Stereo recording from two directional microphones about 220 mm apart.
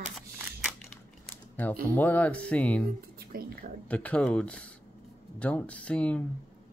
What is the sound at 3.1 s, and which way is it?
Speech, 40° right (ahead or behind).